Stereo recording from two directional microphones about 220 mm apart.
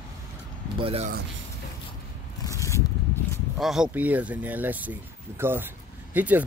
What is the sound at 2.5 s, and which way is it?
Zipper, 15° left (ahead or behind).